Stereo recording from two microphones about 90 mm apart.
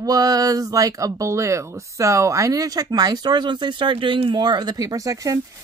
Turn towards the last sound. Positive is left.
turn(degrees=-40)  # may be behind; listen again after turning